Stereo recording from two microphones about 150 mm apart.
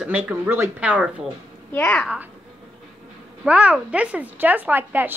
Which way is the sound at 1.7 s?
5° left (ahead or behind).